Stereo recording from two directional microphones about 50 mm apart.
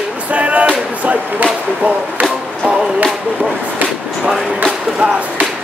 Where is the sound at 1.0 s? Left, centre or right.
Right.